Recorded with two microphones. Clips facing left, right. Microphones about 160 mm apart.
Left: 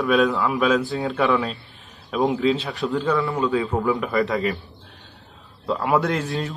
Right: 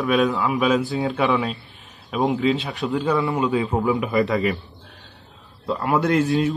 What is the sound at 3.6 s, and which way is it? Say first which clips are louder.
Speech: right 1 dB; 20° right (ahead or behind).